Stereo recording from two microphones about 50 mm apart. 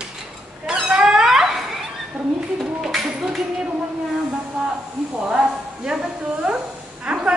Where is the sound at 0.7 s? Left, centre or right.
Centre.